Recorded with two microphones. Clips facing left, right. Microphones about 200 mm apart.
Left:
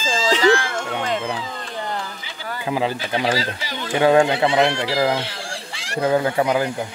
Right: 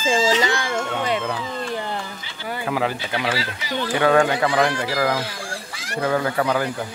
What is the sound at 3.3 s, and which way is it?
Speech, 35° left (ahead or behind).